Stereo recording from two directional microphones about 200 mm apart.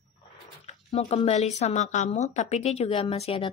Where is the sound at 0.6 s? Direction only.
35° left (ahead or behind).